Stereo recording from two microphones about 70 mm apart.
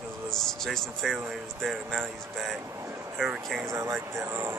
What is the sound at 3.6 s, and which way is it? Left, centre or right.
Speech, right.